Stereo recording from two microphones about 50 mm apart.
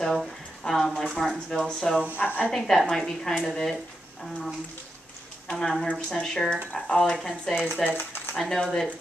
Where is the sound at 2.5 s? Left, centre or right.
Centre.